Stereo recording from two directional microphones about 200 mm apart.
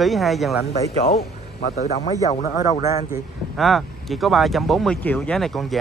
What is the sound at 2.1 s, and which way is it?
Speech, 15° left (ahead or behind).